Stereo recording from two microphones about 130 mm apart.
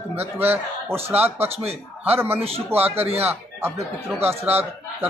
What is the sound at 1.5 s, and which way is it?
Speech, 50° right (ahead or behind).